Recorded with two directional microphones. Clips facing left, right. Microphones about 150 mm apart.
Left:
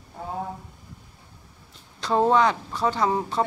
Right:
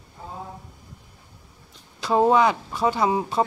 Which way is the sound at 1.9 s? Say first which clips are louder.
Right 2 dB; 5° right (ahead or behind).